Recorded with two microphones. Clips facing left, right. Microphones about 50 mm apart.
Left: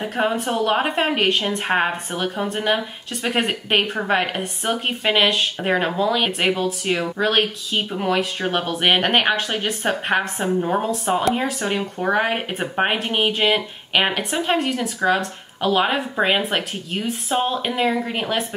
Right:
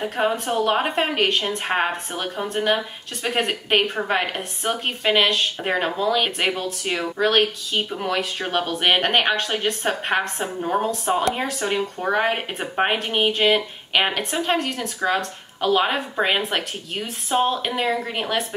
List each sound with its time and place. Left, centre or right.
0.0 s speech: centre